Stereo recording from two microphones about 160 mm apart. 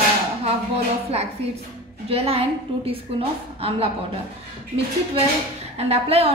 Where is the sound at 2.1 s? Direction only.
40° right (ahead or behind).